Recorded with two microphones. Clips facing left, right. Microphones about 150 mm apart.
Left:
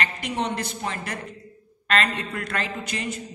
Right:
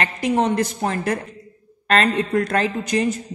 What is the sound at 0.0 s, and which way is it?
A woman's voice, 40° right (ahead or behind).